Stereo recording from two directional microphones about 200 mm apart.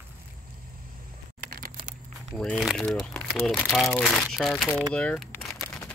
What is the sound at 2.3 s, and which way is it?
Speech, centre (ahead or behind).